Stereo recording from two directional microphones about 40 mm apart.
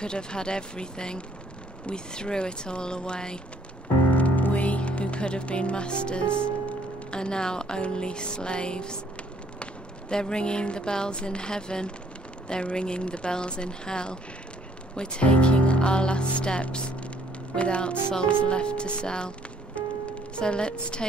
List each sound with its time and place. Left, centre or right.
0.0 s speech: left
4.1 s music: left; by 7.8 s centre
7.8 s speech: left